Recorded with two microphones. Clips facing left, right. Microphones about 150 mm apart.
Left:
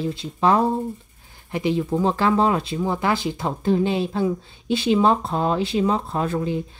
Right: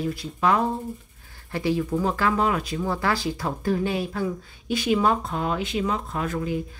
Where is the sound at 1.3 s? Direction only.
20° left (ahead or behind).